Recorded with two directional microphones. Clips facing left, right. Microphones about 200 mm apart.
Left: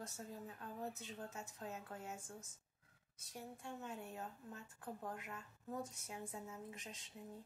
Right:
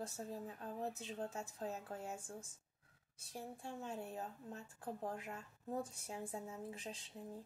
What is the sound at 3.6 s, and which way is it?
A woman's voice, 30° right (ahead or behind).